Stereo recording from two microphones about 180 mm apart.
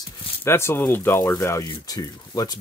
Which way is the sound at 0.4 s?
15° left (ahead or behind).